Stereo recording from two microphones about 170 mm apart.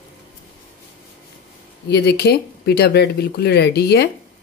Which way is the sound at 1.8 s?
75° left (ahead or behind).